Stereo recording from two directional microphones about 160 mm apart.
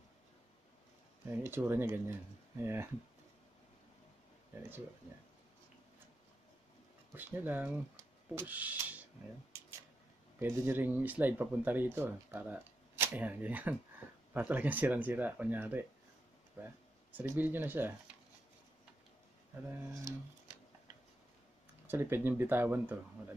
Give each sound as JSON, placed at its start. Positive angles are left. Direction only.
{"t": 1.3, "sound": "speech", "side_deg": -10}
{"t": 7.2, "sound": "speech", "side_deg": -10}
{"t": 10.4, "sound": "speech", "side_deg": -15}
{"t": 19.8, "sound": "speech", "side_deg": -20}
{"t": 21.8, "sound": "speech", "side_deg": -15}